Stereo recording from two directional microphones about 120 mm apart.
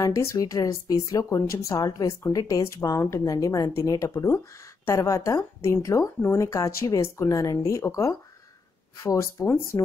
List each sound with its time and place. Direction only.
0.0 s speech: 25° left (ahead or behind)